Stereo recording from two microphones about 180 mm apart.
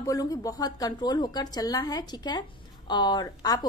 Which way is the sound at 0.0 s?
20° left (ahead or behind).